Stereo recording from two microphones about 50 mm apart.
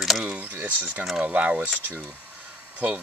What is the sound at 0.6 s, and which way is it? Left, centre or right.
Speech, right.